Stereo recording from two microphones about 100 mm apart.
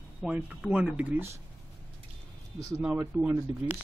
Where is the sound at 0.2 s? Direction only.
10° right (ahead or behind).